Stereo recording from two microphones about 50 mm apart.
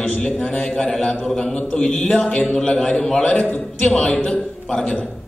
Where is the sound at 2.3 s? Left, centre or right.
Centre.